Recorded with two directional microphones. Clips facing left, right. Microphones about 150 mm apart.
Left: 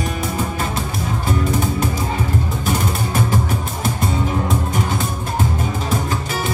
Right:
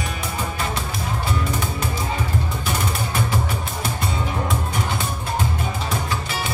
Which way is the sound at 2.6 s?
45° left (ahead or behind).